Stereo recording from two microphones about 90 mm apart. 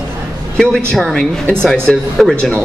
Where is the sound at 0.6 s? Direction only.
5° left (ahead or behind).